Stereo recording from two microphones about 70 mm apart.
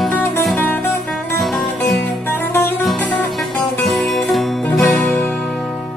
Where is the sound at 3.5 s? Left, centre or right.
Centre.